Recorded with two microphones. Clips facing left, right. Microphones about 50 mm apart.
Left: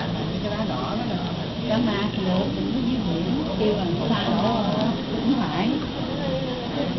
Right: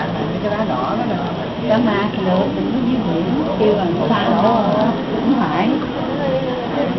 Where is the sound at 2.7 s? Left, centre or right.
Right.